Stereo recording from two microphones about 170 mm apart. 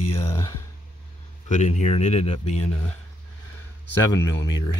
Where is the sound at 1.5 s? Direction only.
45° left (ahead or behind).